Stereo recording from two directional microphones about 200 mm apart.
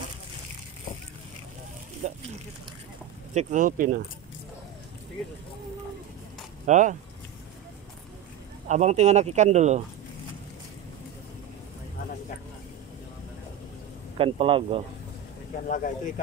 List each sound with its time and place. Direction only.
2.0 s a sound: 35° right (ahead or behind)
3.3 s speech: 40° right (ahead or behind)
6.6 s speech: 40° right (ahead or behind)
8.6 s speech: 35° right (ahead or behind)
14.1 s a man's voice: 30° right (ahead or behind)
15.6 s speech: 40° left (ahead or behind)